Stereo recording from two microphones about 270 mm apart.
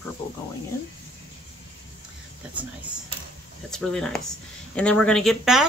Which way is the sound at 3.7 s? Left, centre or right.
Centre.